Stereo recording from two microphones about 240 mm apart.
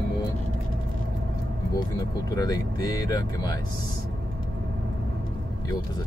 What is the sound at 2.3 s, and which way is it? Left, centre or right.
Speech, centre.